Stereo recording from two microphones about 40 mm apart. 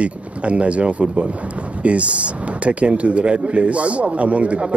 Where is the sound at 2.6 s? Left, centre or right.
Right.